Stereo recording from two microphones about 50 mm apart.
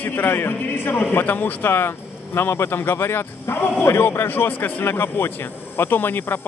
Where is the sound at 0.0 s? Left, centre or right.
Left.